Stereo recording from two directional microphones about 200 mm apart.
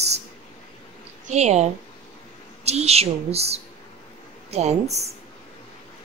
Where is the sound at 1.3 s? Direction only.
35° right (ahead or behind).